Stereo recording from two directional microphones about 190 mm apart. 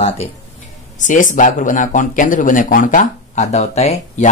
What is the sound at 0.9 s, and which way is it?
Speech, 40° left (ahead or behind).